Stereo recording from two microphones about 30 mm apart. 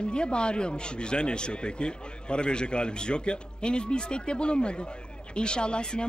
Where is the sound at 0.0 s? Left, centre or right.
Left.